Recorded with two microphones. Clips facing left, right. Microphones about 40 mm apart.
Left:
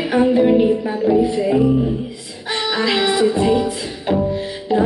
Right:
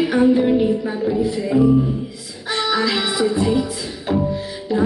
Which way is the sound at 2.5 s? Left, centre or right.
Centre.